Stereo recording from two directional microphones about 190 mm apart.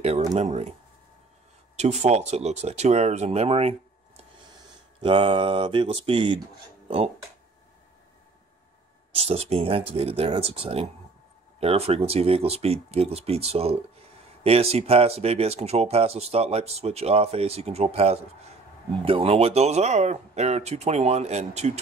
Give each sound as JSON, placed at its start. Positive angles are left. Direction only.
{"t": 0.4, "sound": "speech", "side_deg": -35}
{"t": 1.8, "sound": "speech", "side_deg": -35}
{"t": 5.0, "sound": "mantra", "side_deg": -25}
{"t": 9.1, "sound": "speech", "side_deg": -30}